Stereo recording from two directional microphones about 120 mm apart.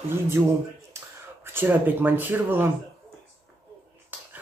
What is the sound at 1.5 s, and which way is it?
Speech, 15° right (ahead or behind).